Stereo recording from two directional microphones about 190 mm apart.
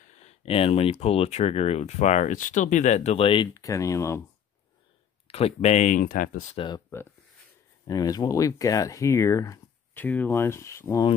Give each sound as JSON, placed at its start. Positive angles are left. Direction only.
{"t": 0.2, "sound": "speech", "side_deg": 30}
{"t": 5.3, "sound": "speech", "side_deg": 35}
{"t": 6.5, "sound": "speech", "side_deg": 25}
{"t": 6.9, "sound": "speech", "side_deg": 10}